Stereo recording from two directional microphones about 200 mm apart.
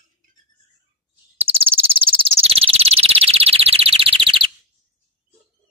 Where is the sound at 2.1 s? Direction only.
30° right (ahead or behind).